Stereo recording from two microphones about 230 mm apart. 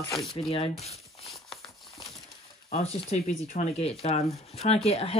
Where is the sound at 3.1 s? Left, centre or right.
Left.